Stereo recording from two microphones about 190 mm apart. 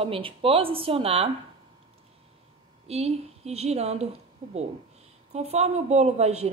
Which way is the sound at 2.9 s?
35° right (ahead or behind).